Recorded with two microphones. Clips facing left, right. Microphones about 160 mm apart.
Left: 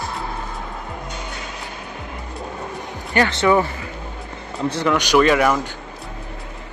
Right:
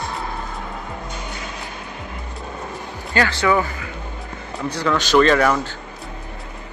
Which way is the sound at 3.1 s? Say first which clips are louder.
Left 2 dB; 20° left (ahead or behind).